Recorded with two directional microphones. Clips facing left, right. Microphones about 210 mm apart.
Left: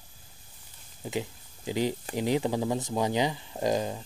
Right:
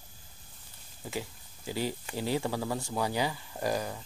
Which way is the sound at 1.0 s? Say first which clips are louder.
Left 5 dB; 20° left (ahead or behind).